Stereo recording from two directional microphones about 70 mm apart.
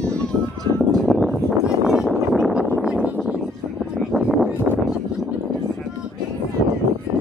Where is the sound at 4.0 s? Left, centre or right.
Centre.